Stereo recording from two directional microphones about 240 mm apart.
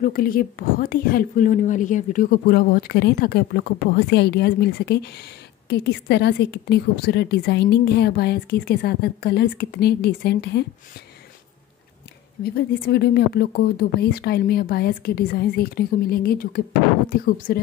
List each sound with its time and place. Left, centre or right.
0.0 s a woman's voice: left
12.5 s a woman's voice: left